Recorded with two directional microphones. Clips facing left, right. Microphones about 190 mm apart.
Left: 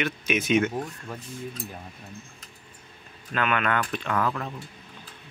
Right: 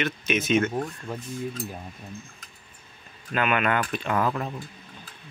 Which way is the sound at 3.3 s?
10° right (ahead or behind).